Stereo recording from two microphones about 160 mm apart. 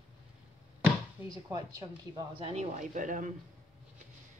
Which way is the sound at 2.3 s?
40° right (ahead or behind).